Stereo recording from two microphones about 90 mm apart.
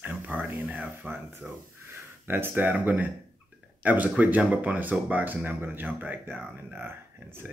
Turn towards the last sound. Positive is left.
turn(degrees=-25)  # may be behind; listen again after turning